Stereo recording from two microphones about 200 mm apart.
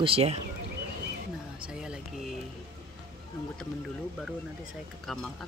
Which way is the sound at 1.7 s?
5° right (ahead or behind).